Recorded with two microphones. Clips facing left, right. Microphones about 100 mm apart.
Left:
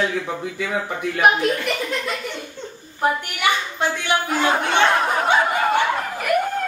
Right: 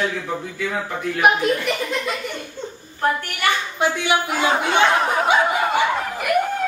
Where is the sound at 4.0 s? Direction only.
15° right (ahead or behind).